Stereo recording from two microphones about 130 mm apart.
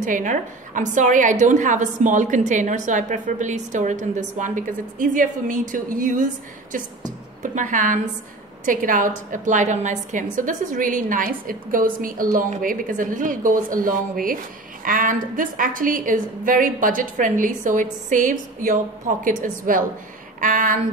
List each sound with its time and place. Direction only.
0.0 s a woman's voice: 80° right
8.6 s a woman's voice: 90° right
9.3 s a woman's voice: 75° right (ahead or behind)
10.3 s a woman's voice: 90° right